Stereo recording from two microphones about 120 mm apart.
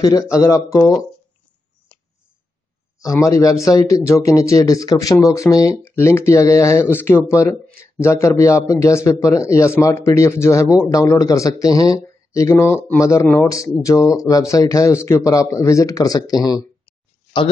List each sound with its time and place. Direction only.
0.0 s a man's voice: 30° left (ahead or behind)
3.0 s a man's voice: 30° left (ahead or behind)